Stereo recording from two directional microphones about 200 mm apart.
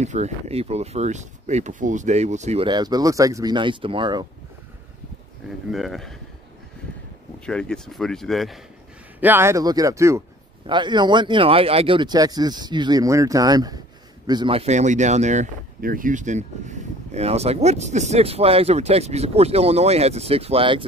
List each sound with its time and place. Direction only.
0.0 s speech: 35° right (ahead or behind)
5.7 s speech: centre (ahead or behind)
7.3 s speech: 5° left (ahead or behind)
9.2 s speech: 10° right (ahead or behind); by 20.8 s 25° right (ahead or behind)